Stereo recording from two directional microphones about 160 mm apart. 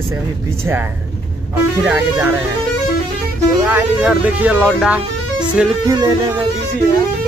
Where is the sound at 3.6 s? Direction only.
10° right (ahead or behind).